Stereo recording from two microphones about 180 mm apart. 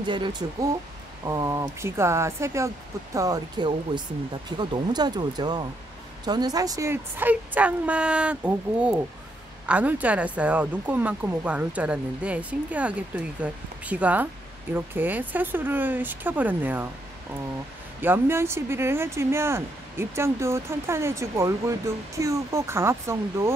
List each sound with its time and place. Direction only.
0.0 s speech: 25° right (ahead or behind); by 16.8 s 10° right (ahead or behind)
18.0 s speech: 15° right (ahead or behind)